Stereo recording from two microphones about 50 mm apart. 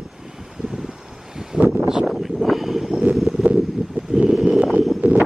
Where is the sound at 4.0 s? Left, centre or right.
Right.